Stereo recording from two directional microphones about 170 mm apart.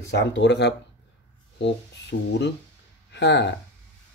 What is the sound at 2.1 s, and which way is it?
Speech, 90° left.